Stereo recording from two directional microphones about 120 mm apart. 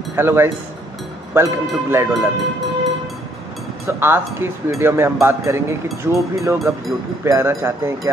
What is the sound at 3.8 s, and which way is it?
Speech, 20° right (ahead or behind).